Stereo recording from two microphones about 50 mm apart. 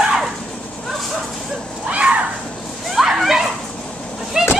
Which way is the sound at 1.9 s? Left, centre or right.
Right.